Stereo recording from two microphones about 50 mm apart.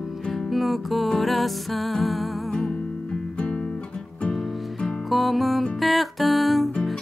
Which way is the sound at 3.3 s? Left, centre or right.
Centre.